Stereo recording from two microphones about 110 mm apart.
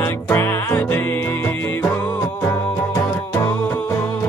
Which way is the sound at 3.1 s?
15° left (ahead or behind).